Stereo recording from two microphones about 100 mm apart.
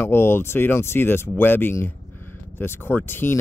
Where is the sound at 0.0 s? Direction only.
25° left (ahead or behind).